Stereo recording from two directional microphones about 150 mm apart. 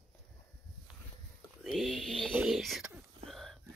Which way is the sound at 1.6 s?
Centre (ahead or behind).